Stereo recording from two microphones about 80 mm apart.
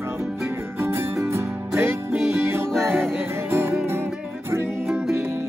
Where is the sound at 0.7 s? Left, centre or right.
Right.